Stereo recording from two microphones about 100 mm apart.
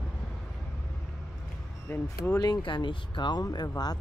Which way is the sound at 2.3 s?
45° left (ahead or behind).